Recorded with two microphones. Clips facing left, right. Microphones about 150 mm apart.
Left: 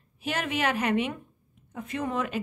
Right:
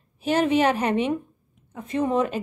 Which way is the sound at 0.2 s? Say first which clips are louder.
Right 9 dB; 30° right (ahead or behind).